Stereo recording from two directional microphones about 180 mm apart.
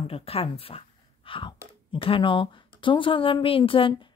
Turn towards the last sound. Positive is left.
turn(degrees=30)  # may be behind; listen again after turning